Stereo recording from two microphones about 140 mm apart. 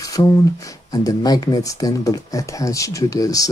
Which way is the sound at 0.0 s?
25° left (ahead or behind).